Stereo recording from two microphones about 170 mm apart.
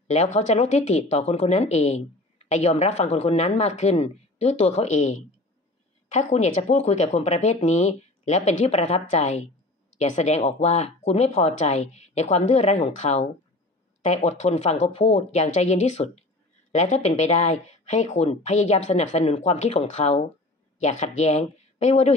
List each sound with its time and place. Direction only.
0.1 s a woman's voice: 40° left (ahead or behind)